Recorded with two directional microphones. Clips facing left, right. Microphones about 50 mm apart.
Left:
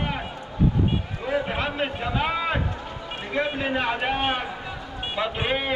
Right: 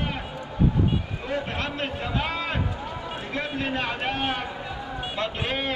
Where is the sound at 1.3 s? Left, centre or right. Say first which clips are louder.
Left 4 dB; centre.